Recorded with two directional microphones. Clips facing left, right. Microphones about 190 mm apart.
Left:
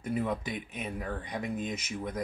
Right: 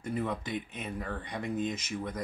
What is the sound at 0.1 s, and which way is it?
Speech, 10° left (ahead or behind).